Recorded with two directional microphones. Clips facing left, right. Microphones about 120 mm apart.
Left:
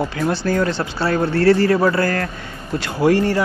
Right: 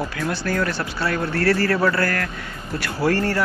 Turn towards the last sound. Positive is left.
turn(degrees=15)  # may be behind; listen again after turning